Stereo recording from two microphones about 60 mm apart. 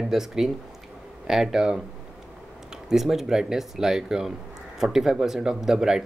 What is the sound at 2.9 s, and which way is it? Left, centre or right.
Speech, centre.